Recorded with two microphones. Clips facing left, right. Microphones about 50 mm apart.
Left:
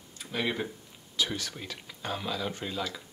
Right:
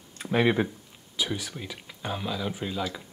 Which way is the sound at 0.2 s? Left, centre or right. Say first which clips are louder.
Right 8 dB; right.